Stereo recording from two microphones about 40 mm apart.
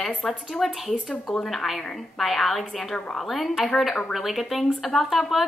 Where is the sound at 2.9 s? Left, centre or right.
Centre.